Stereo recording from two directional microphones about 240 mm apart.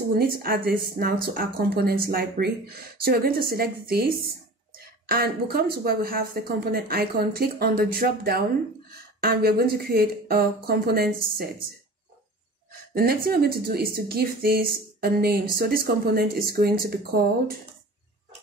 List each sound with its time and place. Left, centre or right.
0.4 s speech: right
5.0 s speech: right
12.9 s speech: right